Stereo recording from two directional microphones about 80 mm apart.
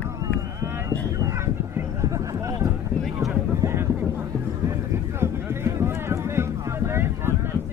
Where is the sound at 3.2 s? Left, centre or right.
Right.